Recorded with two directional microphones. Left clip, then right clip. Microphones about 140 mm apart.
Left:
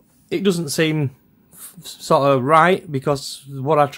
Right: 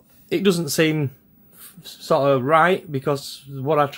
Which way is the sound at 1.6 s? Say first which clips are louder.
Left 3 dB; 30° left (ahead or behind).